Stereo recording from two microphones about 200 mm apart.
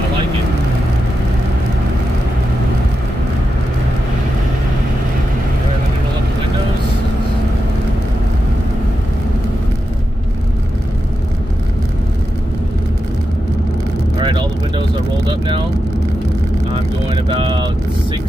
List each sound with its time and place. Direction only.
14.1 s vehicle: 25° right (ahead or behind)
16.7 s vehicle: 25° right (ahead or behind)